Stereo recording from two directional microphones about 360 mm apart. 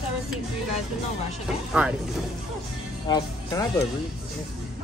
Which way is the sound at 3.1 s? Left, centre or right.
Centre.